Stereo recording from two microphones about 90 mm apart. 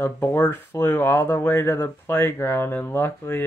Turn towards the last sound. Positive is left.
turn(degrees=25)  # may be behind; listen again after turning